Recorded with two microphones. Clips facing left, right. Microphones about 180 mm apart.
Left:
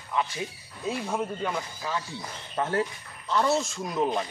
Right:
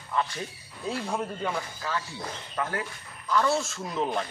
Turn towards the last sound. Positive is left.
turn(degrees=10)  # may be behind; listen again after turning